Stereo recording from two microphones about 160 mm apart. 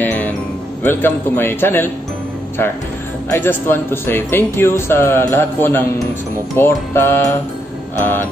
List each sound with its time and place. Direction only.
0.0 s music: 10° left (ahead or behind)
0.8 s speech: 15° left (ahead or behind)
3.3 s speech: 15° left (ahead or behind)